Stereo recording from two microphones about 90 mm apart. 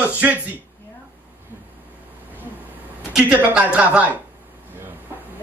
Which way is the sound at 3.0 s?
5° right (ahead or behind).